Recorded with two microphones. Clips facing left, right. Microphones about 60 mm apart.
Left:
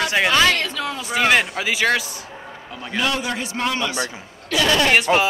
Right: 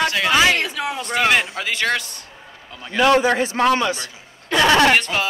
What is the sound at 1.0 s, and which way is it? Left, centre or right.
A man's voice, centre.